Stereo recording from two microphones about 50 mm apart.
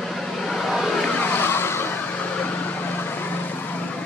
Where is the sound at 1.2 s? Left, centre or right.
Left.